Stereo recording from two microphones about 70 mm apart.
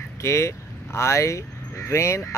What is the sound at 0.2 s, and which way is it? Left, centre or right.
Speech, left.